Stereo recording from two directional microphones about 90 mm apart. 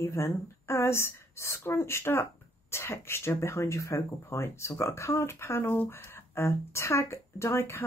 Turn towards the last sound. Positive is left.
turn(degrees=30)  # may be behind; listen again after turning